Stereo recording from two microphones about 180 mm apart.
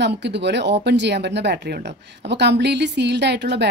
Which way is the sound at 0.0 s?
70° right (ahead or behind).